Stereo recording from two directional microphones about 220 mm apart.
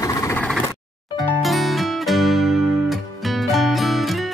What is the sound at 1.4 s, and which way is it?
Music, centre (ahead or behind).